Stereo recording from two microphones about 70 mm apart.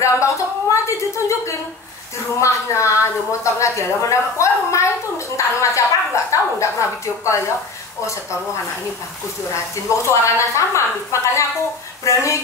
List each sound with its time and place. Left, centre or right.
0.0 s a woman's voice: left
9.5 s a woman's voice: left